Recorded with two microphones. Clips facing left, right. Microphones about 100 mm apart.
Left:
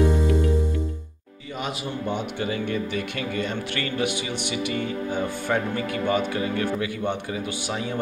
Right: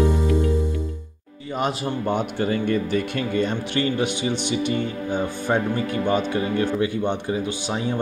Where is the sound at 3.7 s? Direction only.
25° right (ahead or behind).